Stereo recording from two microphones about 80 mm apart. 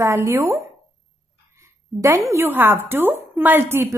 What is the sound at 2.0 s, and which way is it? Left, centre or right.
Speech, right.